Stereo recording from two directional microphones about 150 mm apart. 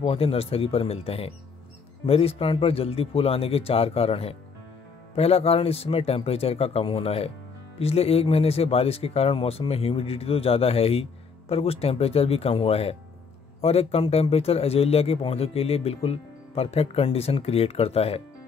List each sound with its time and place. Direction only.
0.0 s speech: 40° left (ahead or behind)